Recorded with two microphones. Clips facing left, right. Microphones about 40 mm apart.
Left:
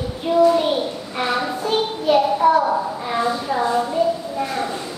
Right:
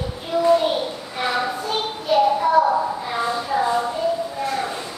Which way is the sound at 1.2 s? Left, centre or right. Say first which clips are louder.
Left 1 dB; centre.